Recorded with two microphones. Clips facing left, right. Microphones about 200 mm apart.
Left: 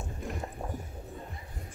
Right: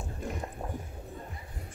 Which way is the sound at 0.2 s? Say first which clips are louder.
Right 1 dB; centre (ahead or behind).